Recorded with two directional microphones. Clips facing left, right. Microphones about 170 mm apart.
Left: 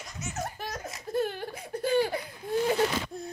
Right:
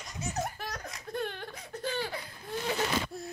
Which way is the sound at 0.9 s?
5° left (ahead or behind).